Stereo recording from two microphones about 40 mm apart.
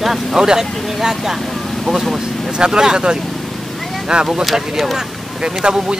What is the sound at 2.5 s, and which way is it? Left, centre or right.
Speech, centre.